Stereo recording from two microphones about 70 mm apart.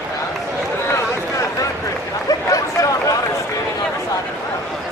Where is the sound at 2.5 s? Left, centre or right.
Left.